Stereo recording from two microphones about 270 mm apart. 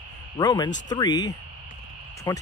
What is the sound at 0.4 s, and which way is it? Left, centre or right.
Speech, centre.